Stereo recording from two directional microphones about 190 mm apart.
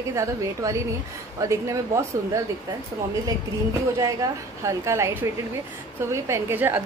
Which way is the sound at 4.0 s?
15° right (ahead or behind).